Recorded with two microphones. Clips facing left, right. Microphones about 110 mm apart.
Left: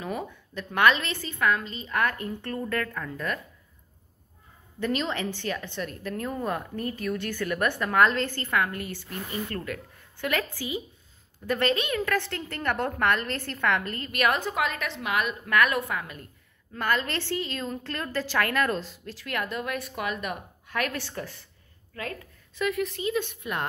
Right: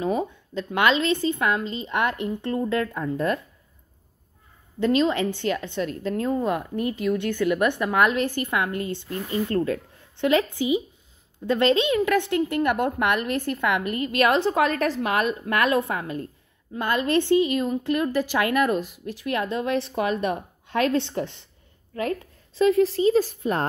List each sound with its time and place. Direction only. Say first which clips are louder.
0.0 s a woman's voice: right 8 dB; 20° right (ahead or behind)
4.7 s a woman's voice: right 8 dB; 20° right (ahead or behind)
14.1 s a woman's voice: right 5 dB; 30° right (ahead or behind)
16.7 s a woman's voice: right 5 dB; 20° right (ahead or behind); by 23.6 s 35° right (ahead or behind)